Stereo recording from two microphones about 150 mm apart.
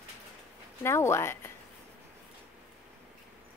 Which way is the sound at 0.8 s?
15° left (ahead or behind).